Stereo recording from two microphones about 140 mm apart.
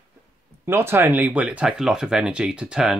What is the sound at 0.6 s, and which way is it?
Speech, 15° right (ahead or behind).